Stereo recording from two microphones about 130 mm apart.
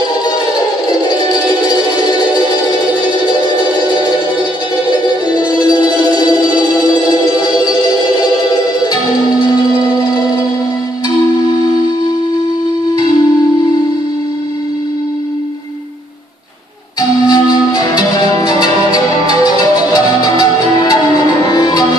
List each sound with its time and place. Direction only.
17.3 s music: 30° left (ahead or behind)